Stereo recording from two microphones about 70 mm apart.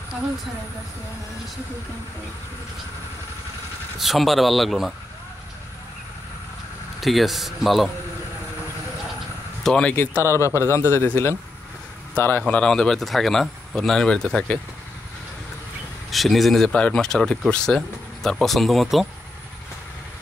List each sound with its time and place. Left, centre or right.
4.0 s speech: centre
7.0 s speech: centre
9.6 s a sound: centre
10.1 s speech: right
10.4 s a man's voice: left
12.2 s a man's voice: left
12.4 s speech: centre
16.1 s speech: centre
18.3 s speech: centre